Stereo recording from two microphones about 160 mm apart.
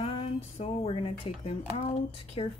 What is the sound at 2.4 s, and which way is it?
Speech, 40° left (ahead or behind).